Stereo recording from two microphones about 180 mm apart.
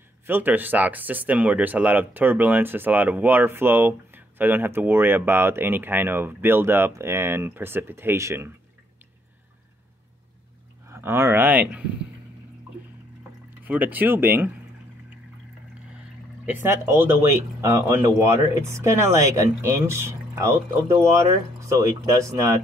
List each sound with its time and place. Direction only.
0.3 s speech: 10° right (ahead or behind)
10.9 s speech: 15° right (ahead or behind)
13.7 s speech: 10° right (ahead or behind)
16.6 s speech: 15° right (ahead or behind)